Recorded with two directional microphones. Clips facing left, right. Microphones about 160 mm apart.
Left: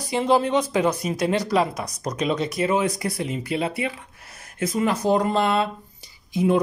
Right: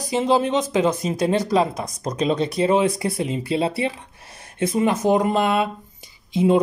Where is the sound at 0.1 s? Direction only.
20° right (ahead or behind).